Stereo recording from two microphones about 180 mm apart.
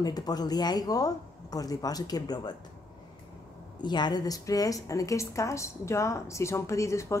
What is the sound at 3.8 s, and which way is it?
A woman's voice, 25° left (ahead or behind).